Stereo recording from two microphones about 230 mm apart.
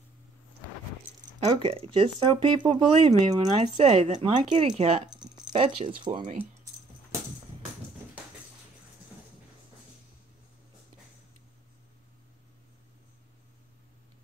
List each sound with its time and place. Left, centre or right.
1.4 s speech: right
6.3 s keys jangling: centre